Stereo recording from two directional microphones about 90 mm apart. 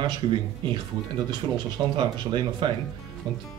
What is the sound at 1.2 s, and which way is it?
A man's voice, 55° right (ahead or behind).